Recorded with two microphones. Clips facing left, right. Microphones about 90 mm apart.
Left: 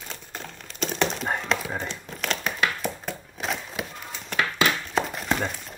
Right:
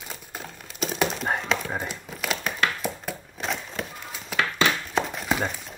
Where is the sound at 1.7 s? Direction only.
10° right (ahead or behind).